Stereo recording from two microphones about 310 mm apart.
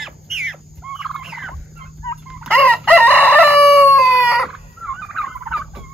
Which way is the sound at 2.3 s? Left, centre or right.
Centre.